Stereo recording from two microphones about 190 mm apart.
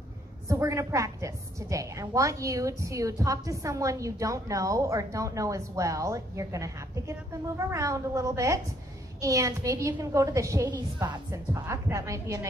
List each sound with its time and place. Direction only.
0.5 s a woman's voice: 15° right (ahead or behind)